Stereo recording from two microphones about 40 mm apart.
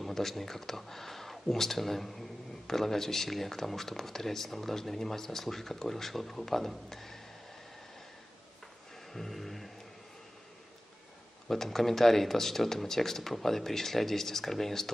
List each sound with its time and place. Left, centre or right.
0.0 s speech: centre
9.1 s a sound: centre
11.4 s speech: centre